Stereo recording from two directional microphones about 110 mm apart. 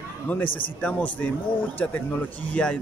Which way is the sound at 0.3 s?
15° left (ahead or behind).